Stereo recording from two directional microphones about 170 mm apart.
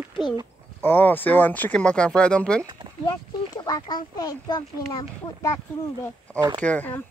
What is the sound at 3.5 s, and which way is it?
Speech, 25° left (ahead or behind).